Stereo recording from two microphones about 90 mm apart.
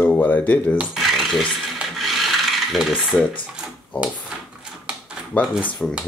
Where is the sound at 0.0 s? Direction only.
20° left (ahead or behind).